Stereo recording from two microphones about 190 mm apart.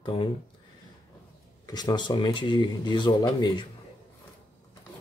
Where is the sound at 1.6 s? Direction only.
20° left (ahead or behind).